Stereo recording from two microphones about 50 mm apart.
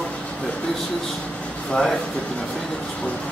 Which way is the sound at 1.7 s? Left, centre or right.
Centre.